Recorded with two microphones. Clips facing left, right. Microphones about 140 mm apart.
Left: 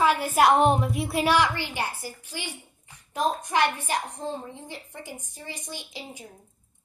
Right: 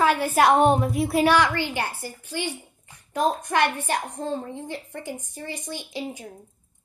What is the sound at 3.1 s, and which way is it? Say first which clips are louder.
A woman's voice: right 2 dB; 55° right (ahead or behind).